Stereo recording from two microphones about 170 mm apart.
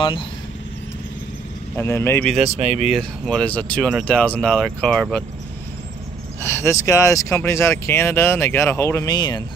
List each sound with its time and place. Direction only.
1.8 s speech: 15° left (ahead or behind)
2.4 s speech: 40° right (ahead or behind)
2.9 s speech: 5° left (ahead or behind)
6.4 s speech: 15° left (ahead or behind)